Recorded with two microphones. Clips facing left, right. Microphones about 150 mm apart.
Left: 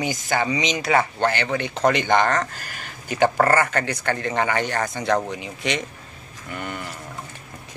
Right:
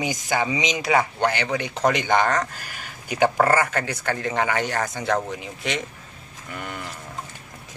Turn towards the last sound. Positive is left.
turn(degrees=0)  # may be behind; listen again after turning